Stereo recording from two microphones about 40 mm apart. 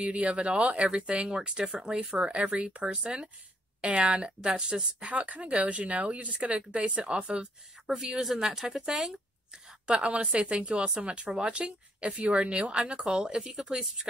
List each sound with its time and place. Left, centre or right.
0.0 s speech: right
2.3 s speech: right
5.1 s speech: right
7.8 s speech: centre
9.8 s speech: right; by 14.0 s centre